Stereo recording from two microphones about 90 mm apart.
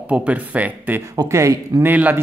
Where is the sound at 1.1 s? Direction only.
40° right (ahead or behind).